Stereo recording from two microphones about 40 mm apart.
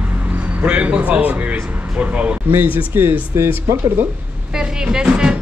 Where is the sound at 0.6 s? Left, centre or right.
Right.